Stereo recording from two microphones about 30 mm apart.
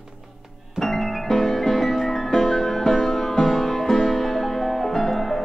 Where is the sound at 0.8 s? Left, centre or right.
Centre.